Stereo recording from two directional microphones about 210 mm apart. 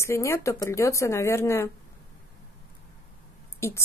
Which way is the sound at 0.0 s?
15° left (ahead or behind).